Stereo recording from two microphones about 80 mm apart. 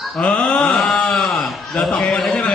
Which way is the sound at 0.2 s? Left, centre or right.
Centre.